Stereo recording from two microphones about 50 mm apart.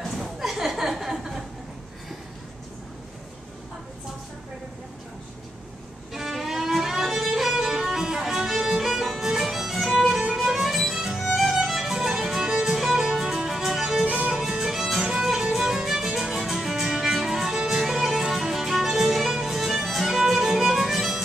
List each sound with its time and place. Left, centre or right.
0.0 s a sound: centre
6.1 s music: centre
14.0 s music: right
14.3 s music: centre